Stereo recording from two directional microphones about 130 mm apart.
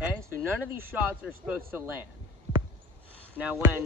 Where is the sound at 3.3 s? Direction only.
10° right (ahead or behind).